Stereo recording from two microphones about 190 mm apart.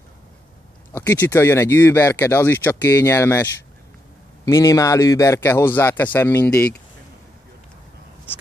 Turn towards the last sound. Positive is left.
turn(degrees=10)  # may be behind; listen again after turning